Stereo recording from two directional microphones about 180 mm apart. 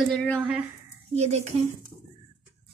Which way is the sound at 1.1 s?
40° right (ahead or behind).